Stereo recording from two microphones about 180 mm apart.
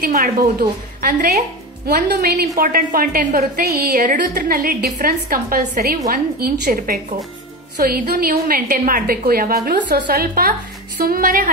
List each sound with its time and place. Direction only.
0.0 s a woman's voice: 55° right (ahead or behind)